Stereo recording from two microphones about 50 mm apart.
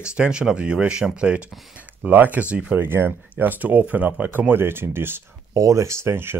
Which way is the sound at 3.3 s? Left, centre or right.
Right.